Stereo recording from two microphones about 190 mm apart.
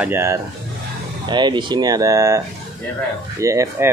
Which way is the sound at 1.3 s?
25° right (ahead or behind).